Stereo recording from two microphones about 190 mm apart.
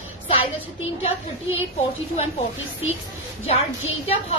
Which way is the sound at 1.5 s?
30° left (ahead or behind).